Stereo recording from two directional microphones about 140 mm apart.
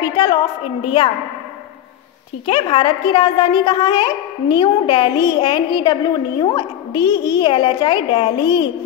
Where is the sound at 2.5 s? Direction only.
40° left (ahead or behind).